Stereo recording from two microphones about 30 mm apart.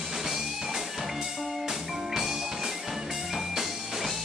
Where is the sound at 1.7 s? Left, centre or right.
Centre.